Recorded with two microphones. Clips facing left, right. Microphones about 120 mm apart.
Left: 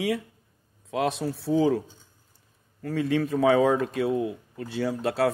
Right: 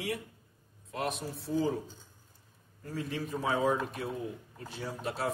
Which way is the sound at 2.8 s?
90° left.